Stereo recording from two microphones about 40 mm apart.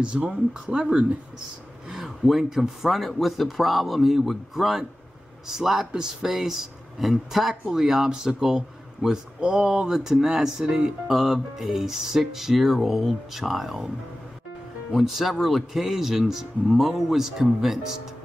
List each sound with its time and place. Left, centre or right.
0.1 s speech: right
1.9 s speech: centre
15.0 s speech: centre